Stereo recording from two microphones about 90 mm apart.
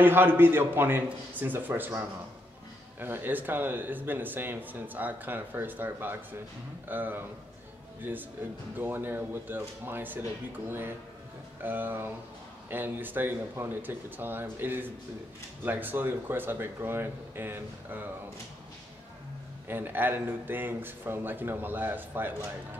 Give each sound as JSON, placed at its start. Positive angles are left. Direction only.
{"t": 0.0, "sound": "speech", "side_deg": -25}
{"t": 19.7, "sound": "speech", "side_deg": -20}